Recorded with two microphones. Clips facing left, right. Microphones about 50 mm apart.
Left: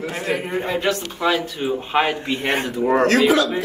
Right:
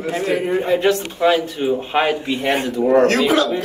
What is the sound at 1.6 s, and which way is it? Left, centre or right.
Speech, centre.